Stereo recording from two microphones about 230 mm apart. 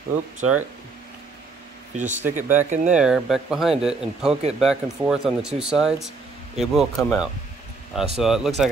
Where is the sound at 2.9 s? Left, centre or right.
Centre.